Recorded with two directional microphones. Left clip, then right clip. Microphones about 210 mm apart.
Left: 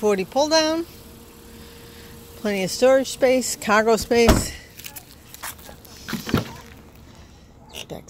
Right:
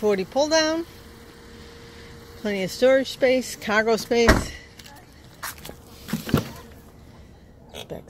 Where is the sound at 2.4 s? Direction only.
10° left (ahead or behind).